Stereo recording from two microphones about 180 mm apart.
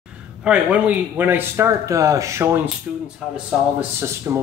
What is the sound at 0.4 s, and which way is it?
Speech, 5° right (ahead or behind).